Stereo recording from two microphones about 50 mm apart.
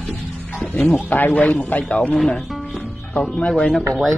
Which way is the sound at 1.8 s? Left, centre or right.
Left.